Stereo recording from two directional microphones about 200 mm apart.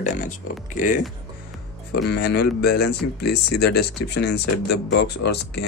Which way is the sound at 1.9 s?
55° left (ahead or behind).